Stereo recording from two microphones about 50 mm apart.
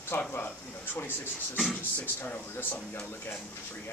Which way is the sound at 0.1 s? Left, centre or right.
Left.